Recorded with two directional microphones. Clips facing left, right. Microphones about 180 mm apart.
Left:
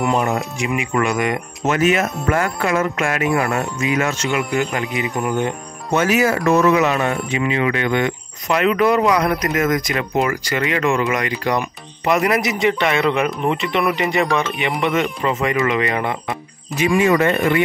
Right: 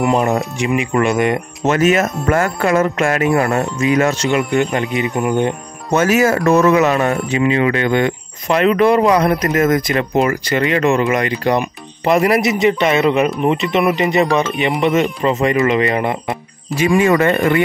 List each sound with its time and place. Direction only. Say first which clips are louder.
0.6 s speech: right 4 dB; 35° right (ahead or behind)
1.8 s speech: right 3 dB; 45° right (ahead or behind); by 5.5 s 20° right (ahead or behind)
5.9 s speech: right 3 dB; 45° right (ahead or behind); by 16.3 s 25° right (ahead or behind)
16.8 s speech: right 2 dB; 50° right (ahead or behind)